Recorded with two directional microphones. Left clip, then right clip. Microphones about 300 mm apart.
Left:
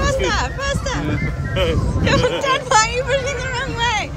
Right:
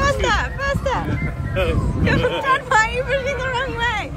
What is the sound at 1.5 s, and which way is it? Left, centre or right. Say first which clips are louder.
Speech: left 2 dB; centre.